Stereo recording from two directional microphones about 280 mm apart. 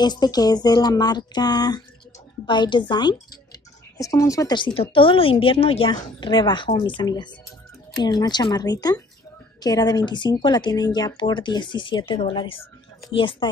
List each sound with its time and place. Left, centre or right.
0.0 s speech: centre